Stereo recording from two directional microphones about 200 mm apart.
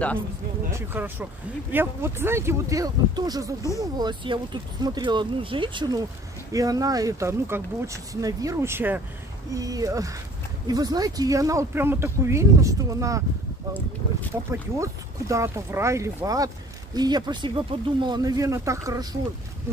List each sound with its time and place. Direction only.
0.7 s speech: 10° right (ahead or behind)
14.3 s speech: 15° right (ahead or behind)